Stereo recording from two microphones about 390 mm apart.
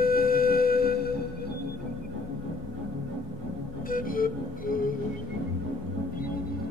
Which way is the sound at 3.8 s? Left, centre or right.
Left.